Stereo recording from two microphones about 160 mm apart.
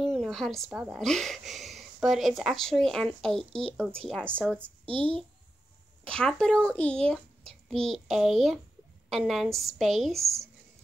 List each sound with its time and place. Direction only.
0.0 s a sound: centre (ahead or behind)
0.7 s speech: centre (ahead or behind)
4.4 s a woman's voice: 10° right (ahead or behind)
4.8 s a child's voice: 35° right (ahead or behind)
6.0 s a child's voice: 5° left (ahead or behind)